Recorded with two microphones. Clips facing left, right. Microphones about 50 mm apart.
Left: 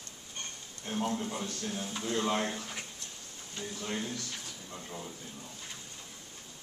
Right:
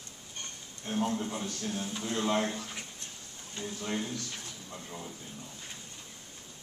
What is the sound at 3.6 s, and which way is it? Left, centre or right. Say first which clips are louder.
A man's voice: right 2 dB; centre.